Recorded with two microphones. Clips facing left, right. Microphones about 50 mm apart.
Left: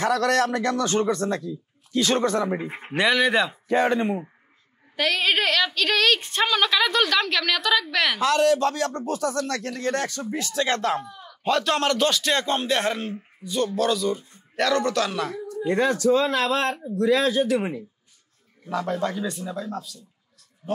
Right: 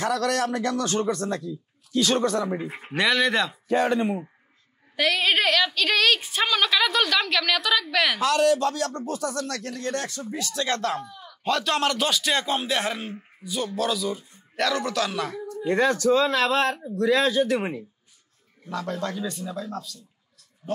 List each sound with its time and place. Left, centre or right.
0.0 s speech: left
3.0 s speech: centre
3.6 s speech: left
4.9 s a woman's voice: centre
8.2 s speech: left
10.5 s speech: left
10.9 s a woman's voice: centre
15.9 s speech: right
16.2 s speech: right
17.5 s speech: right
18.7 s speech: centre